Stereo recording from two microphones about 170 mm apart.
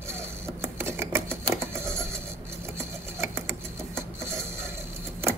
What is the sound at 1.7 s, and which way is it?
Vehicle, 15° right (ahead or behind).